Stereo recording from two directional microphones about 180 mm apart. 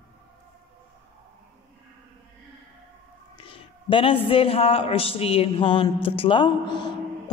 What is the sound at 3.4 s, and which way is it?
A man's voice, 30° left (ahead or behind).